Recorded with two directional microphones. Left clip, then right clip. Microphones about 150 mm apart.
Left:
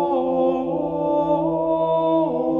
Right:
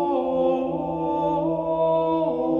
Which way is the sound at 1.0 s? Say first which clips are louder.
Left 3 dB; 25° left (ahead or behind).